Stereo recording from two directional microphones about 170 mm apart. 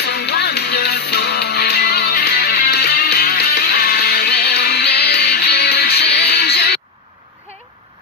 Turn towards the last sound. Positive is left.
turn(degrees=70)  # may be behind; listen again after turning